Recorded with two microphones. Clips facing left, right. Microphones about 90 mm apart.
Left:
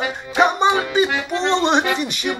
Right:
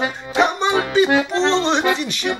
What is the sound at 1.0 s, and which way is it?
Music, 35° right (ahead or behind).